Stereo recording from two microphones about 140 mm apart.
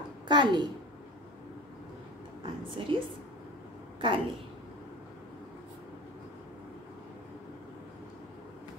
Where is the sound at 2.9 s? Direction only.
35° right (ahead or behind).